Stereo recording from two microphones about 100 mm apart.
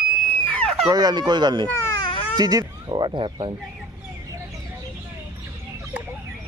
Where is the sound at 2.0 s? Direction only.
55° left (ahead or behind).